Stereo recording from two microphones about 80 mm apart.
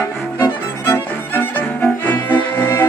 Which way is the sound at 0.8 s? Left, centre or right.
Left.